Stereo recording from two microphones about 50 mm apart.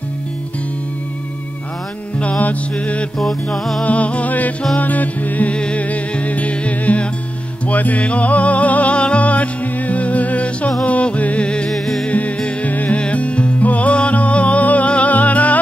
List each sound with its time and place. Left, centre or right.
2.1 s music: left
3.5 s music: centre
3.8 s music: left
5.5 s music: left
11.7 s music: centre
12.1 s music: left